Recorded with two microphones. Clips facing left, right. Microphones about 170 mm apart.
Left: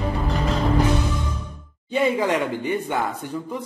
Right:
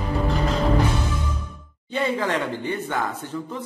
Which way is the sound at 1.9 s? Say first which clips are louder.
Left 3 dB; 15° left (ahead or behind).